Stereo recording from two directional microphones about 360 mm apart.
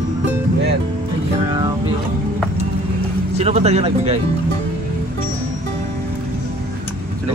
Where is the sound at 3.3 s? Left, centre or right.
Centre.